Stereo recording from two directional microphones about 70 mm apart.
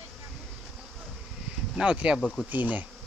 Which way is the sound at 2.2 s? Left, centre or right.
Centre.